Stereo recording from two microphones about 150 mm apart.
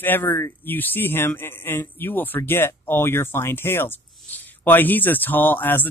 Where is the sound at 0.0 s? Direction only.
15° left (ahead or behind).